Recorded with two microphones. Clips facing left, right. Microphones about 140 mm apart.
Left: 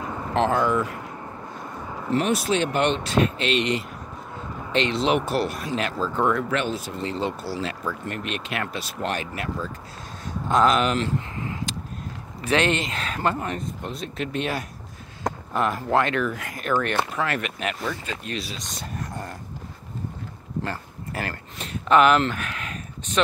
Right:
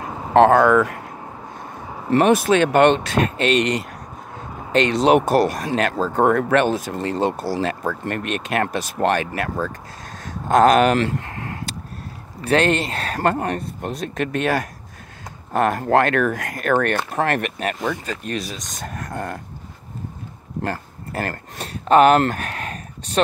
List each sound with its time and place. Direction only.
0.3 s speech: 60° right (ahead or behind)
2.0 s speech: 60° right (ahead or behind)
12.4 s speech: 40° right (ahead or behind)
18.9 s speech: 60° right (ahead or behind)
20.6 s speech: 45° right (ahead or behind)